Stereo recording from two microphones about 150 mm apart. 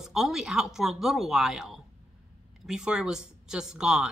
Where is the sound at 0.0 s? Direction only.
5° right (ahead or behind).